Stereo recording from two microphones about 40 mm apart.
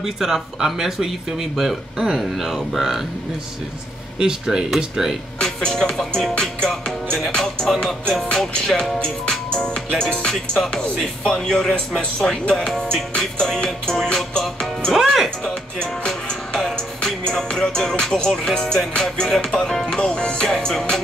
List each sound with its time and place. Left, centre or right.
0.0 s speech: centre
4.2 s speech: centre
5.7 s music: centre
9.6 s speech: left
11.2 s music: centre
15.0 s speech: centre
15.2 s music: centre
19.7 s speech: centre
20.0 s music: left